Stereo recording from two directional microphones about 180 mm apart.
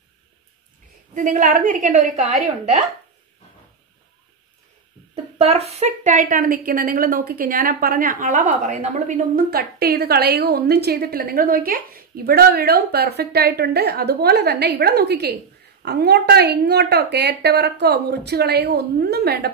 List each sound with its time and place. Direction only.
1.1 s a woman's voice: 45° right (ahead or behind)
5.1 s a woman's voice: 35° right (ahead or behind); by 19.5 s 65° right (ahead or behind)